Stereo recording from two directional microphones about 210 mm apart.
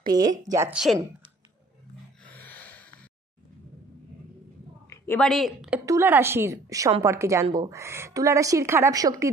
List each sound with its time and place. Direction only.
0.1 s speech: 20° right (ahead or behind)
2.2 s a sound: 10° left (ahead or behind)
4.8 s a woman's voice: 10° left (ahead or behind); by 9.3 s 15° right (ahead or behind)